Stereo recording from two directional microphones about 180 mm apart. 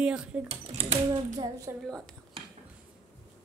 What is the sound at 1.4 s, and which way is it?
Speech, 20° right (ahead or behind).